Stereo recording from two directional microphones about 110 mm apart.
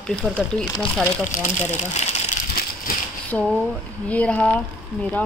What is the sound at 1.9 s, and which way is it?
Speech, 85° left.